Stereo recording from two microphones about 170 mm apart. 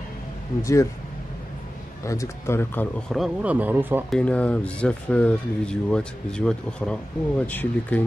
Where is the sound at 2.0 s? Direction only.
20° left (ahead or behind).